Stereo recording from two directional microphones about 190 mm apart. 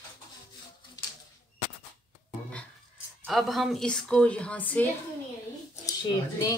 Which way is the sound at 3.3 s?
Centre (ahead or behind).